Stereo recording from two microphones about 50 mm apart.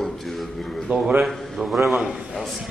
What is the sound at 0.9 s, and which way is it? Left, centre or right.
Speech, right.